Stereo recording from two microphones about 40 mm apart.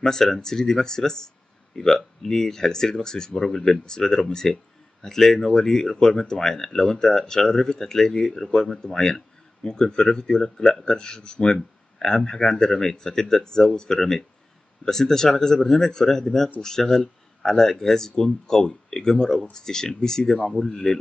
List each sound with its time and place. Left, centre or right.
0.0 s speech: centre